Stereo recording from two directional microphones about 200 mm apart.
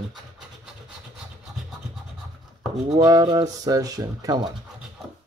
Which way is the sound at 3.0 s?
20° right (ahead or behind).